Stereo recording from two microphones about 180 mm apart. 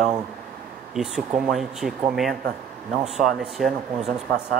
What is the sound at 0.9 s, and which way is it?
Speech, centre (ahead or behind).